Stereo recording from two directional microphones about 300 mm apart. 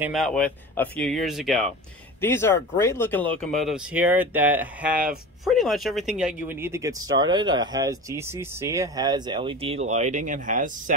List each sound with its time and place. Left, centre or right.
0.0 s speech: centre; by 10.7 s right